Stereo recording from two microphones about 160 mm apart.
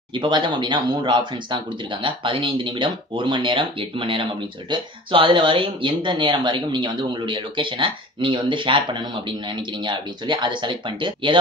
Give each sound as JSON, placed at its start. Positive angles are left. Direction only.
{"t": 0.1, "sound": "speech", "side_deg": -30}